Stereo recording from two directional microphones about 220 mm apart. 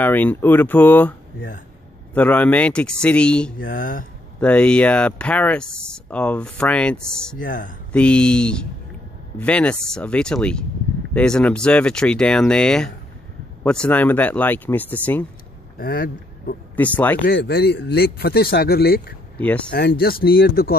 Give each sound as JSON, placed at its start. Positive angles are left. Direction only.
{"t": 0.0, "sound": "speech", "side_deg": 5}
{"t": 2.1, "sound": "speech", "side_deg": 5}
{"t": 3.7, "sound": "speech", "side_deg": 40}
{"t": 4.4, "sound": "speech", "side_deg": 5}
{"t": 15.8, "sound": "speech", "side_deg": 45}
{"t": 16.7, "sound": "speech", "side_deg": 5}
{"t": 17.3, "sound": "speech", "side_deg": 45}
{"t": 19.3, "sound": "speech", "side_deg": 5}
{"t": 19.7, "sound": "speech", "side_deg": 45}